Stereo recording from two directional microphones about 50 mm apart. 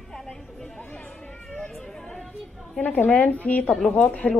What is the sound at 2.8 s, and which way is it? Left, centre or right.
A woman's voice, left.